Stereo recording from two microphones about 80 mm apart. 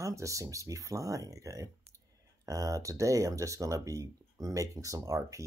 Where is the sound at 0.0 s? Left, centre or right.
Right.